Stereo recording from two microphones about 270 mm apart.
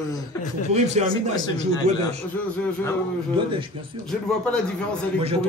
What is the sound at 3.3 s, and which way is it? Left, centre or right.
Speech, centre.